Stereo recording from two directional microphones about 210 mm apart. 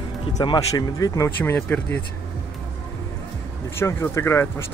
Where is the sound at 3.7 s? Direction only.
10° left (ahead or behind).